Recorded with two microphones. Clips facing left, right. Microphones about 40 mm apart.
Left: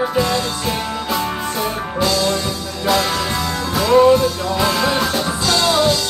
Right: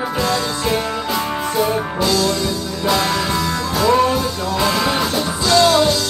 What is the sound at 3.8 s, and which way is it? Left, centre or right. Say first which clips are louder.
Music: left 4 dB; centre.